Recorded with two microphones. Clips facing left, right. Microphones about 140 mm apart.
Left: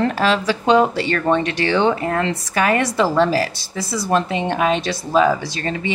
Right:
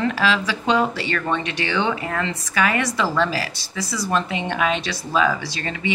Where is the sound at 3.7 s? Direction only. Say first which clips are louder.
Left 2 dB; 25° left (ahead or behind).